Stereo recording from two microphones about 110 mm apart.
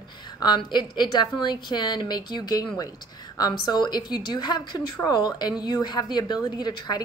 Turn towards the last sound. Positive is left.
turn(degrees=40)  # may be behind; listen again after turning